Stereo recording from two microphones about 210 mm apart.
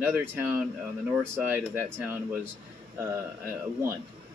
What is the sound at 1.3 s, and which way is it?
Speech, 10° right (ahead or behind).